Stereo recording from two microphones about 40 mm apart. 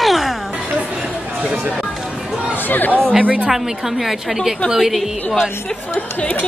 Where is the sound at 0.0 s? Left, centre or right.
Centre.